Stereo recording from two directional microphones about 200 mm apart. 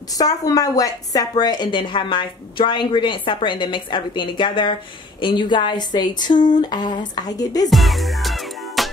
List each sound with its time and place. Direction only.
0.1 s a woman's voice: 20° left (ahead or behind)
7.7 s music: centre (ahead or behind)